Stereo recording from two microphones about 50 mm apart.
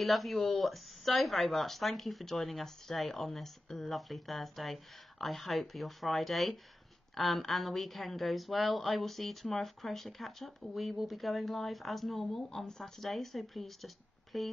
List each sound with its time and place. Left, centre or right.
0.0 s a woman's voice: centre